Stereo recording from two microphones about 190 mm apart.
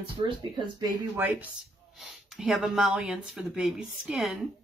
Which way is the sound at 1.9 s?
Centre (ahead or behind).